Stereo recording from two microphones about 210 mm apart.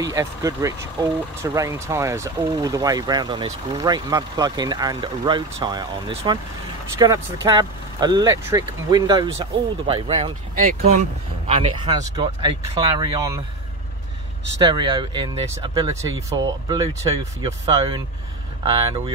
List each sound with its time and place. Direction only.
0.0 s speech: 15° right (ahead or behind)
10.6 s speech: 40° right (ahead or behind)
11.4 s speech: 25° right (ahead or behind)
14.6 s speech: 20° right (ahead or behind)